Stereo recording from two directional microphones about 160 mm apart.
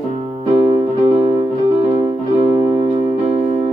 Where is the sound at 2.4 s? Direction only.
35° right (ahead or behind).